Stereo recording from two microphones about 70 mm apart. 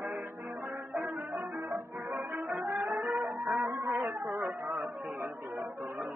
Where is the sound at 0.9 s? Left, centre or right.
Right.